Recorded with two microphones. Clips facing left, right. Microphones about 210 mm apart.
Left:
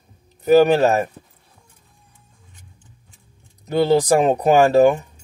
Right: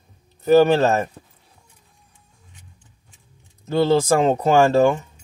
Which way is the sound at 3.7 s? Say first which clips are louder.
Left 1 dB; 15° left (ahead or behind).